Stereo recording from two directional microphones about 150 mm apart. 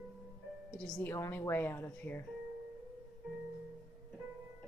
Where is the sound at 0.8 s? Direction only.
5° left (ahead or behind).